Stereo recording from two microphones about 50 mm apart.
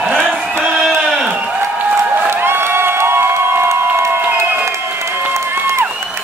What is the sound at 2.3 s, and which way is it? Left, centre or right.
Crowd, right.